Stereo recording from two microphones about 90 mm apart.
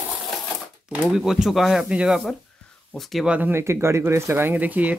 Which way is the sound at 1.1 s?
5° right (ahead or behind).